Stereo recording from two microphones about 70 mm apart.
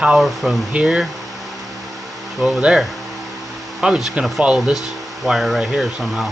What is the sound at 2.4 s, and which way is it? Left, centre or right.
Speech, centre.